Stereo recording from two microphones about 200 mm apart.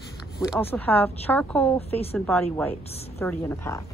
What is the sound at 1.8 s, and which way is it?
Speech, 30° left (ahead or behind).